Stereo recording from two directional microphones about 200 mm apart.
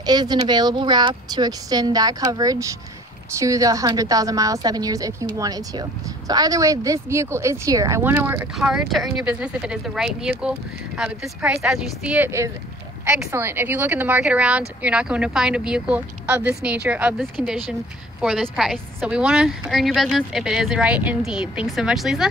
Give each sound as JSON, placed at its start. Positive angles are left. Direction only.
{"t": 0.0, "sound": "a woman's voice", "side_deg": -20}
{"t": 11.2, "sound": "a woman's voice", "side_deg": -5}